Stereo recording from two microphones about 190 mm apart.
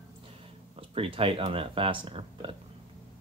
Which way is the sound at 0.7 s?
30° right (ahead or behind).